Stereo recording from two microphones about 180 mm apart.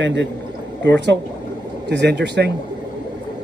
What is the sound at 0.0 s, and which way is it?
Speech, 85° right.